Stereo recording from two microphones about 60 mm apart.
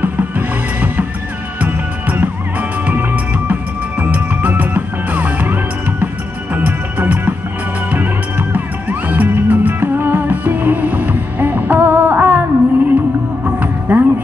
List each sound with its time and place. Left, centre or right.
0.0 s music: right
8.5 s music: right